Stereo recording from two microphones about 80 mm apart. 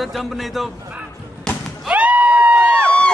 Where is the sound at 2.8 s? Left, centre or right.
Centre.